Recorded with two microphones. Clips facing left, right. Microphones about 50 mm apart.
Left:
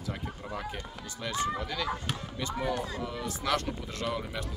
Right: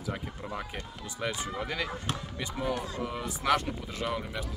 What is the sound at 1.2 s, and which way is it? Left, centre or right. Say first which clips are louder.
Speech: left 2 dB; right.